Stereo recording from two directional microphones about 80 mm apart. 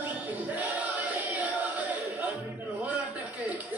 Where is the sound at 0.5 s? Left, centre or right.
Centre.